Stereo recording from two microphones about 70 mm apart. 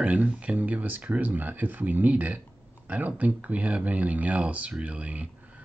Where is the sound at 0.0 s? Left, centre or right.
Centre.